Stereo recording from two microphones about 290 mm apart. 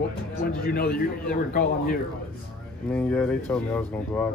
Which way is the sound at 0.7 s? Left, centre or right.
Left.